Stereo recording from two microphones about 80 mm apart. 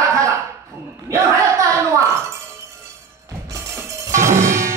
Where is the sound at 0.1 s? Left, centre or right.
Right.